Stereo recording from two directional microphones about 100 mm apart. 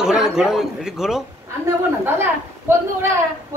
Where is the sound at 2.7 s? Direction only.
25° right (ahead or behind).